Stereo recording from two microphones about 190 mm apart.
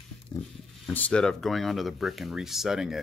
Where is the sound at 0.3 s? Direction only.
10° left (ahead or behind).